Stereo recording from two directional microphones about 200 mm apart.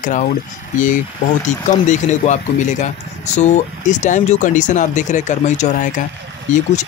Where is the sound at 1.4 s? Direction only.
35° left (ahead or behind).